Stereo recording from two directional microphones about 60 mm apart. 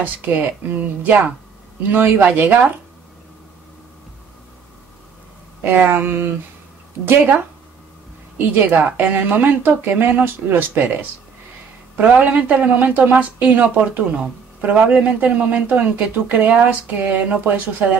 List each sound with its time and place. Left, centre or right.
0.0 s speech: right
5.6 s speech: right
8.6 s speech: right
12.0 s speech: right